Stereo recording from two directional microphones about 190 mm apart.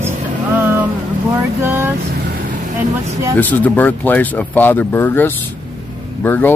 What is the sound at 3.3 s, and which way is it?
Speech, 10° left (ahead or behind).